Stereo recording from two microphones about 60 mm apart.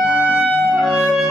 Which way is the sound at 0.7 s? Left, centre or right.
Centre.